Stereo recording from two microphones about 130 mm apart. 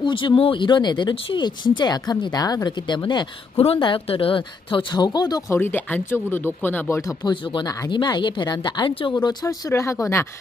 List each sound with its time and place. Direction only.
0.0 s speech: 40° left (ahead or behind)
3.5 s speech: 45° left (ahead or behind); by 5.6 s 30° left (ahead or behind)
5.6 s speech: 15° left (ahead or behind)
7.0 s speech: 25° left (ahead or behind)
7.4 s speech: 40° left (ahead or behind)